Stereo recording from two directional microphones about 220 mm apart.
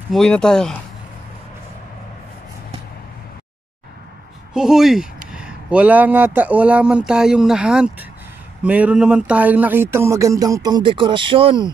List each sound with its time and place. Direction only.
0.1 s speech: 5° left (ahead or behind)
4.6 s speech: centre (ahead or behind); by 11.7 s 25° right (ahead or behind)